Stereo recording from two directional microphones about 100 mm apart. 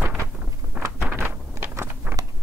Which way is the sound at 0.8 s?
15° right (ahead or behind).